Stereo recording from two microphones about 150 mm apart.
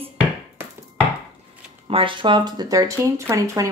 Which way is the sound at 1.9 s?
35° right (ahead or behind).